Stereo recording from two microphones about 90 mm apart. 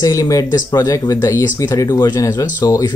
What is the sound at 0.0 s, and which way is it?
Speech, 40° left (ahead or behind).